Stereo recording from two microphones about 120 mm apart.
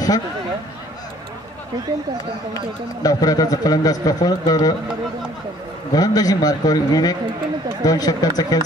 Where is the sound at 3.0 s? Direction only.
30° left (ahead or behind).